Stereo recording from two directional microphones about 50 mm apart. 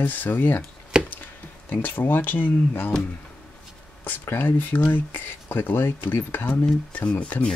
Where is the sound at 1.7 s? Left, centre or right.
Left.